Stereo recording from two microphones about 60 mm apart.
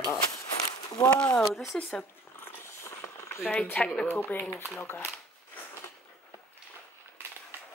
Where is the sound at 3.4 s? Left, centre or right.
Centre.